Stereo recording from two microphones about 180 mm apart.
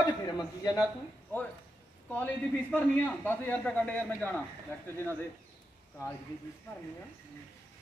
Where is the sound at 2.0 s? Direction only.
10° left (ahead or behind).